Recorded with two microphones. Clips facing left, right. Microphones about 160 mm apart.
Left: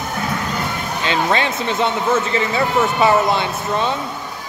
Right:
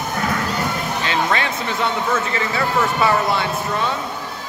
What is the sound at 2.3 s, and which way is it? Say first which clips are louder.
Speech: left 3 dB; 20° left (ahead or behind).